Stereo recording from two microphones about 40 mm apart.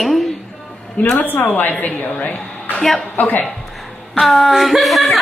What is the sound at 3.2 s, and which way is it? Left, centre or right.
Speech, left.